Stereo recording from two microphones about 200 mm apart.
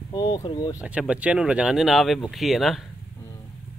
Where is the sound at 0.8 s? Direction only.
5° right (ahead or behind).